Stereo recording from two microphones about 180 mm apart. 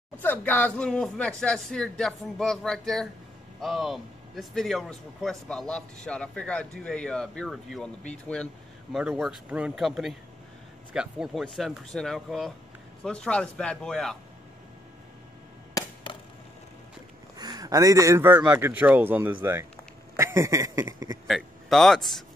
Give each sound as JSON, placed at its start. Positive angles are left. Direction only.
{"t": 0.2, "sound": "speech", "side_deg": 10}
{"t": 15.7, "sound": "chop", "side_deg": 25}
{"t": 17.4, "sound": "speech", "side_deg": -20}
{"t": 21.3, "sound": "speech", "side_deg": 0}